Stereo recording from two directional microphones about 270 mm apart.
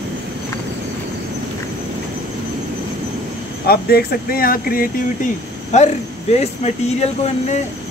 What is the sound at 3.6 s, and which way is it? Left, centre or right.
Speech, left.